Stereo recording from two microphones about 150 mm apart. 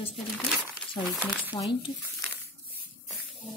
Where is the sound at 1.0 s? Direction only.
Centre (ahead or behind).